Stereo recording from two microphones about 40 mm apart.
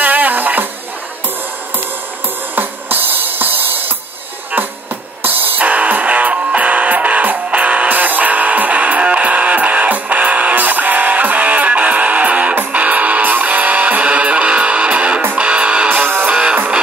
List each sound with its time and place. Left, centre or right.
0.0 s music: right
2.5 s music: right
5.2 s music: right
15.9 s music: right
16.3 s music: right